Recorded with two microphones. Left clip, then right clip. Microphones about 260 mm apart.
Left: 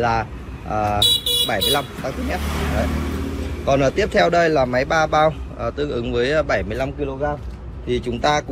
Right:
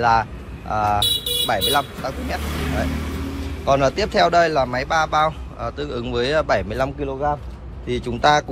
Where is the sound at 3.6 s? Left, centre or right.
Centre.